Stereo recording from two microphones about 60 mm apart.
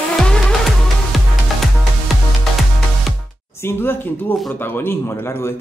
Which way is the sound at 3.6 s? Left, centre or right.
Left.